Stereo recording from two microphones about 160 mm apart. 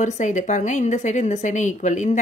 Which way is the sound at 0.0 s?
50° left (ahead or behind).